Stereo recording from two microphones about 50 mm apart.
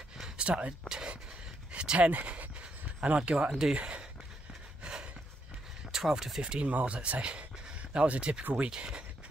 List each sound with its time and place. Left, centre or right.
0.2 s a sound: centre
0.8 s speech: centre
1.7 s a sound: right
3.0 s speech: right
4.8 s snort: centre
5.9 s speech: centre